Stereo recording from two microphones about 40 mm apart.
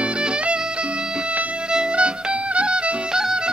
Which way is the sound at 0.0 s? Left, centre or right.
Right.